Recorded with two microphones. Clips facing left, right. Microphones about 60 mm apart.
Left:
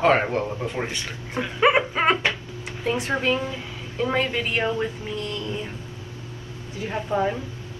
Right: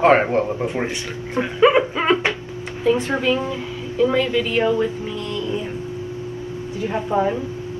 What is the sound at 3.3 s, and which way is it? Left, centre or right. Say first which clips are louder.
Speech: right 4 dB; right.